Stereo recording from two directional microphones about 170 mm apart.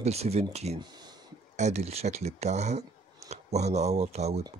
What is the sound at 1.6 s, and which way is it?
Speech, 40° right (ahead or behind).